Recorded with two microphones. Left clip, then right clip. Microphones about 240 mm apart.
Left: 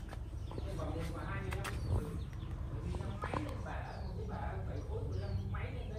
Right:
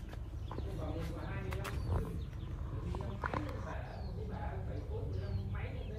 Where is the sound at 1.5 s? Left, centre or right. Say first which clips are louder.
Left 1 dB; right.